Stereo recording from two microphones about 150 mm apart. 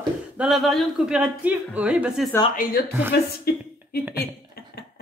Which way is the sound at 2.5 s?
70° left (ahead or behind).